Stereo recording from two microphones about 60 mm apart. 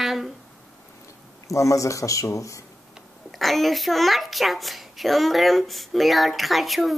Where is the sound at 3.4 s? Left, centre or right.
Centre.